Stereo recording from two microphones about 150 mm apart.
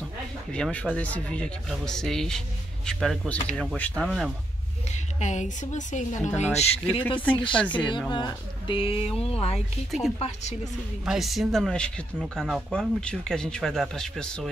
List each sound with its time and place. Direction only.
0.5 s speech: 10° left (ahead or behind)
5.2 s a woman's voice: 55° left (ahead or behind)
7.5 s speech: 10° left (ahead or behind)
8.1 s speech: 30° left (ahead or behind)
9.8 s speech: centre (ahead or behind)
10.1 s a woman's voice: 45° left (ahead or behind)
11.1 s speech: centre (ahead or behind)